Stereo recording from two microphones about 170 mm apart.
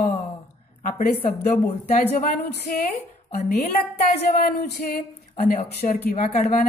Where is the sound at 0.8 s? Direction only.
50° left (ahead or behind).